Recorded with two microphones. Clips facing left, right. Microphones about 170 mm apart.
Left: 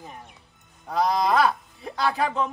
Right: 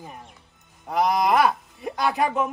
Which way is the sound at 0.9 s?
20° right (ahead or behind).